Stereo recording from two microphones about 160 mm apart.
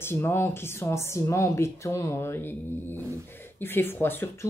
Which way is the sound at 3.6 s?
15° left (ahead or behind).